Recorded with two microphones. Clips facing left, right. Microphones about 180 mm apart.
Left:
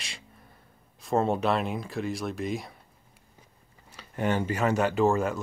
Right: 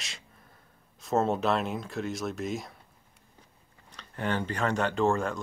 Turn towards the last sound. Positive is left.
turn(degrees=5)  # may be behind; listen again after turning